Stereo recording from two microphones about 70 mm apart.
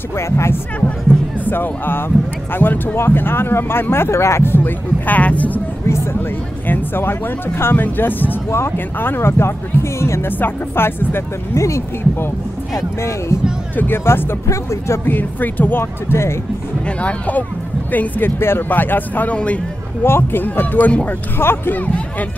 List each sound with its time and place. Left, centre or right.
1.4 s speech: left
6.7 s speech: left
10.4 s speech: left
11.5 s speech: left
13.7 s speech: left
15.0 s speech: left
17.0 s speech: left
20.0 s speech: left